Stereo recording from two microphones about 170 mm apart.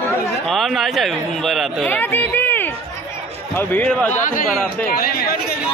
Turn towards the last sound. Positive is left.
turn(degrees=60)  # may be behind; listen again after turning